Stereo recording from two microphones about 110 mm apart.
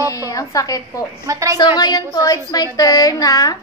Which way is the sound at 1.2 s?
30° right (ahead or behind).